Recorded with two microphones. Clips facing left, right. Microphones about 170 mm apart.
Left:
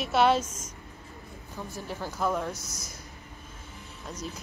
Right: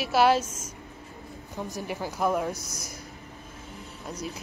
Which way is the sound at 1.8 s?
15° right (ahead or behind).